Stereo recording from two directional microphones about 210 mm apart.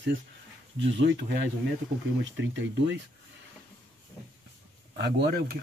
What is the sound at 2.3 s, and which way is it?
Speech, 60° right (ahead or behind).